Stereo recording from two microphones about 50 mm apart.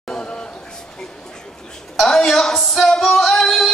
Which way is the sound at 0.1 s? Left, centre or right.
Centre.